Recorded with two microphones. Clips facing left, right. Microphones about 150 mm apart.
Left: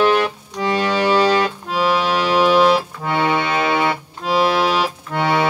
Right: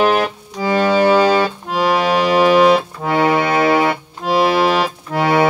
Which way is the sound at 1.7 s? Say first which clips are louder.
Right 3 dB; 45° right (ahead or behind).